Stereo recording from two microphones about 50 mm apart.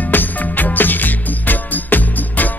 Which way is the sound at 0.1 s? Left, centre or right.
Left.